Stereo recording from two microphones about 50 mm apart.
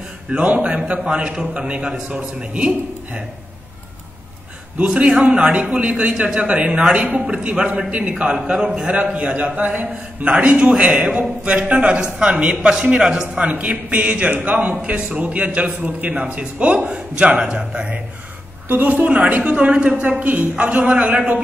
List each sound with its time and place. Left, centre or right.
0.3 s a man's voice: right
4.7 s a man's voice: right
13.4 s a man's voice: right
18.7 s a woman's voice: right